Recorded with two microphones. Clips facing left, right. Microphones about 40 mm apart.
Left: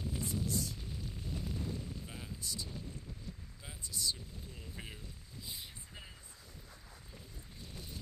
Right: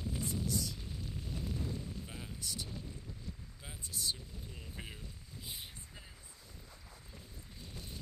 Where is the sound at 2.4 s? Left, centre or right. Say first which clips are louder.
Even; right.